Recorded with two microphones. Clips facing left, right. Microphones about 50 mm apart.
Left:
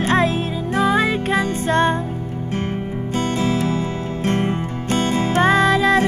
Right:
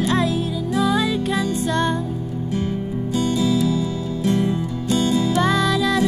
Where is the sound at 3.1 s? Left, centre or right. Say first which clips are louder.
Right 1 dB; left.